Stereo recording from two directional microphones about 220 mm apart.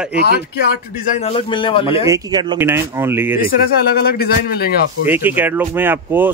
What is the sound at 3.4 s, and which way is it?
A man's voice, 45° left (ahead or behind).